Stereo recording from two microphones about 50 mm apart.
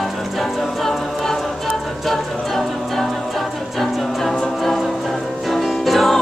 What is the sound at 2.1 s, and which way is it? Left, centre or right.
Music, centre.